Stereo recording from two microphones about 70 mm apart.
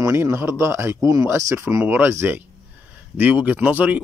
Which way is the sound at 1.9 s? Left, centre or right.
Right.